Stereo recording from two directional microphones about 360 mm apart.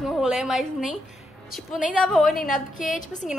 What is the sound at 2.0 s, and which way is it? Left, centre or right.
Speech, centre.